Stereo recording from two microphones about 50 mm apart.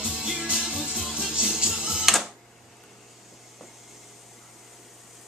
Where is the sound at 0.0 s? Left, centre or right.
Centre.